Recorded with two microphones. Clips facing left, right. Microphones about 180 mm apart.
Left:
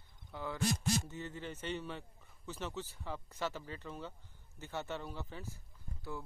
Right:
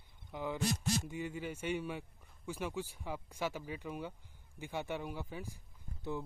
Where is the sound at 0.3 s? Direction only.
15° right (ahead or behind).